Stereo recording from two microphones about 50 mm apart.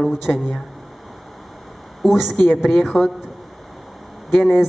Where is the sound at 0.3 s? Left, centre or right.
Left.